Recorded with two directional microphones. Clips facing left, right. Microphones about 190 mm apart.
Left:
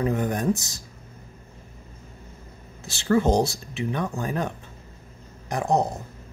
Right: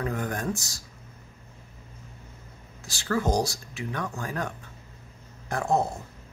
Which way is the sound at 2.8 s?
25° left (ahead or behind).